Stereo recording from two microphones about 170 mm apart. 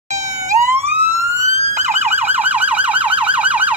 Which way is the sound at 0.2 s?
20° right (ahead or behind).